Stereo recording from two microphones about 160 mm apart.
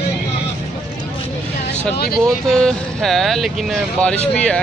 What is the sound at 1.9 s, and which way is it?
Speech, 80° left.